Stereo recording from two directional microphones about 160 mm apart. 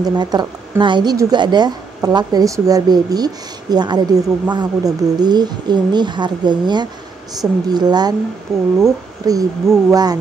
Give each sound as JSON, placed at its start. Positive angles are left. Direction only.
{"t": 0.0, "sound": "a woman's voice", "side_deg": -25}